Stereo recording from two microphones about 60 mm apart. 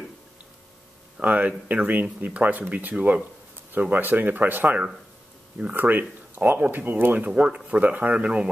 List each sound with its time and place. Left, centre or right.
1.1 s speech: right
7.2 s speech: right